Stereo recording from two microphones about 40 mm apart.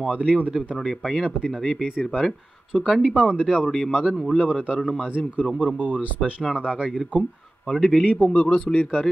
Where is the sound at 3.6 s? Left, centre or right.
Centre.